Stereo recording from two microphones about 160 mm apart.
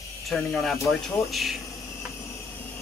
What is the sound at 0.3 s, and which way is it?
Speech, centre (ahead or behind).